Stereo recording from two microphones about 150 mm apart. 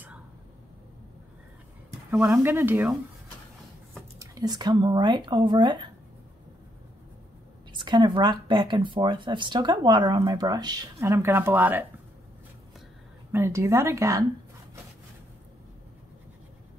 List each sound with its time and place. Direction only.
2.0 s speech: 15° right (ahead or behind)
4.2 s speech: 25° right (ahead or behind)
7.7 s speech: 30° right (ahead or behind); by 11.8 s 15° right (ahead or behind)
13.3 s speech: 15° right (ahead or behind)